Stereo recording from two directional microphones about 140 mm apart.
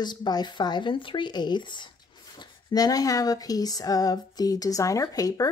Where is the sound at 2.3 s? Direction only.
25° left (ahead or behind).